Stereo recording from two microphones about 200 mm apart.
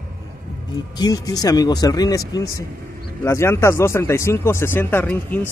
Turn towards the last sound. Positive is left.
turn(degrees=10)  # may be behind; listen again after turning